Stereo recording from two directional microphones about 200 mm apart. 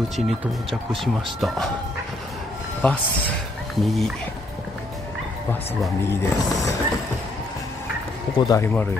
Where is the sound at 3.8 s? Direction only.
Centre (ahead or behind).